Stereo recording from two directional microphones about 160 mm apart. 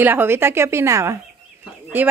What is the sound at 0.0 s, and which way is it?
A woman's voice, 10° right (ahead or behind).